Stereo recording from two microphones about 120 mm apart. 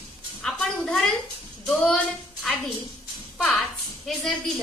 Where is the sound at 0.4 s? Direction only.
5° left (ahead or behind).